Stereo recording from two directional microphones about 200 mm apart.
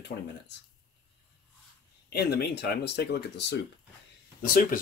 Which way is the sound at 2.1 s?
55° left (ahead or behind).